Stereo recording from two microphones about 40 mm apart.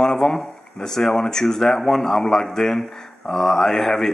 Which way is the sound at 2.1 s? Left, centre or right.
Left.